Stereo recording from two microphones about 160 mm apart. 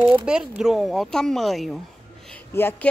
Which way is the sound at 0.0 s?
10° right (ahead or behind).